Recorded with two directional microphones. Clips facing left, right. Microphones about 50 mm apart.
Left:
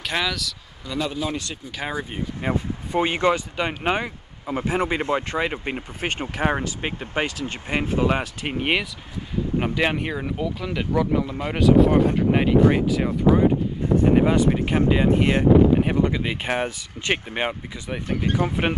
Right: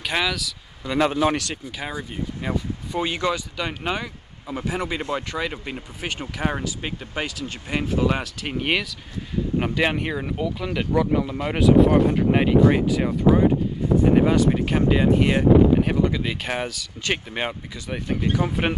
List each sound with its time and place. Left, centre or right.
0.0 s speech: centre
0.9 s speech: right
1.9 s speech: centre
2.5 s speech: left
5.9 s speech: left; by 8.8 s centre
9.6 s speech: centre
14.5 s speech: centre; by 17.2 s left
17.3 s speech: centre